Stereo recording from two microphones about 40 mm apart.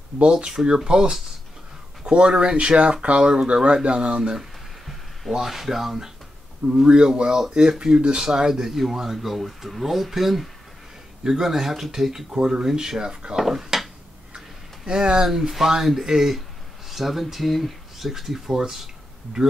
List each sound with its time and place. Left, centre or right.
0.2 s speech: right
4.2 s speech: centre
5.3 s speech: centre
6.8 s speech: centre
13.4 s speech: centre
14.9 s speech: right
15.2 s speech: centre